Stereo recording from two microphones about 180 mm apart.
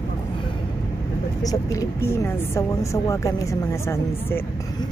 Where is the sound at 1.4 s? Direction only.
20° left (ahead or behind).